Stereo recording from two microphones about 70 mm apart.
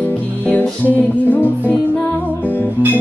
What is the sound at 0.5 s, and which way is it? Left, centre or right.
Music, left.